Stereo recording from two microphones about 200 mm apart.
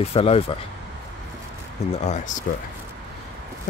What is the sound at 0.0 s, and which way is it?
Speech, 30° left (ahead or behind).